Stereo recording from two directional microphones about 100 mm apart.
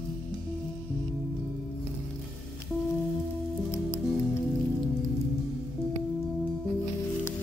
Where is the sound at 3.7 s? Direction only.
25° left (ahead or behind).